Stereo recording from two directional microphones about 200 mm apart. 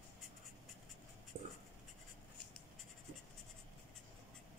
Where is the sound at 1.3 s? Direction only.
55° right (ahead or behind).